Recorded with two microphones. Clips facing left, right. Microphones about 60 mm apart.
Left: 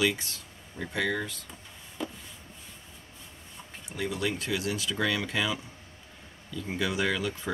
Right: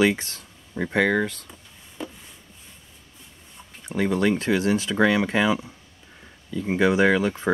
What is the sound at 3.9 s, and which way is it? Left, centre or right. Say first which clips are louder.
Speech: right 10 dB; right.